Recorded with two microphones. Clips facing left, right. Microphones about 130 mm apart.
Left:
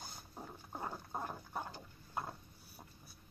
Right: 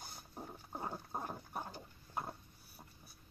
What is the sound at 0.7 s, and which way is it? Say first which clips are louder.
Dog: even; 20° right (ahead or behind).